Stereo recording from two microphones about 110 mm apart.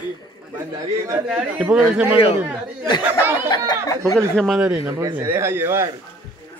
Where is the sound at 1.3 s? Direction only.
10° right (ahead or behind).